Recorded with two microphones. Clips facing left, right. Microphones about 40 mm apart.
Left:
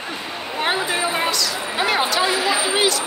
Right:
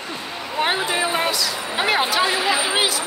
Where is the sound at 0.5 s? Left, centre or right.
Centre.